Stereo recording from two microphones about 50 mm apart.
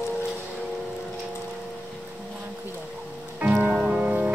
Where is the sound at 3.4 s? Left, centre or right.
Right.